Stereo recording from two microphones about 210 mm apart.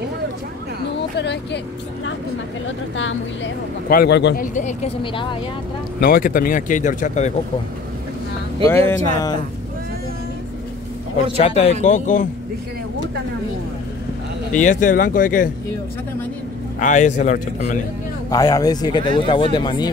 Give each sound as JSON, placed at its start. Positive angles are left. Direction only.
{"t": 1.1, "sound": "speech", "side_deg": 55}
{"t": 3.0, "sound": "speech", "side_deg": 65}
{"t": 3.9, "sound": "speech", "side_deg": 50}
{"t": 4.6, "sound": "speech", "side_deg": 30}
{"t": 5.9, "sound": "speech", "side_deg": 45}
{"t": 8.6, "sound": "speech", "side_deg": 10}
{"t": 11.3, "sound": "speech", "side_deg": 30}
{"t": 14.5, "sound": "speech", "side_deg": 35}
{"t": 16.8, "sound": "speech", "side_deg": 35}
{"t": 18.3, "sound": "speech", "side_deg": 15}